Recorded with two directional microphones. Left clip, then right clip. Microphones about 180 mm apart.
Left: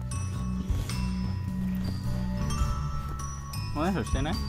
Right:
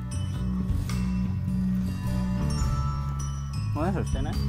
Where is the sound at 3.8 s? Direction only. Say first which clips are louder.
Even; 5° right (ahead or behind).